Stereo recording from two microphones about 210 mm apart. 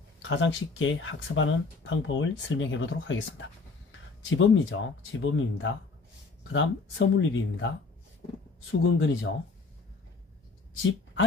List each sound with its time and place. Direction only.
0.4 s speech: 65° left (ahead or behind)
4.4 s speech: 70° left (ahead or behind)
8.8 s speech: 65° left (ahead or behind)
10.8 s speech: 65° left (ahead or behind)